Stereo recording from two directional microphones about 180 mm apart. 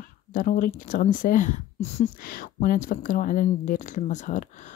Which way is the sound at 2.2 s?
55° left (ahead or behind).